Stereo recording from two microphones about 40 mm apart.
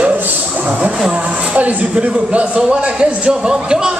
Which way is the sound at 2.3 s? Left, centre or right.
Right.